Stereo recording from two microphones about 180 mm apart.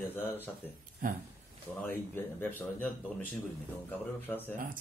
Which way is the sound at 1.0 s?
50° right (ahead or behind).